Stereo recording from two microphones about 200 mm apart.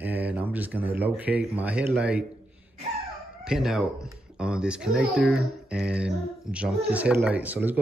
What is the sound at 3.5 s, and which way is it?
Speech, centre (ahead or behind).